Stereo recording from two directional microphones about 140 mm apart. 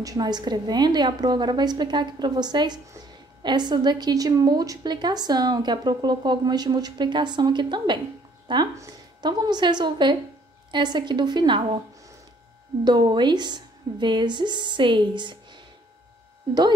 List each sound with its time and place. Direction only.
0.0 s a woman's voice: 30° right (ahead or behind)
12.8 s a woman's voice: 30° right (ahead or behind)